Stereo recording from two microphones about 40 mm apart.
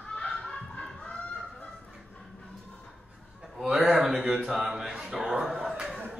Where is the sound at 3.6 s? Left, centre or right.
Centre.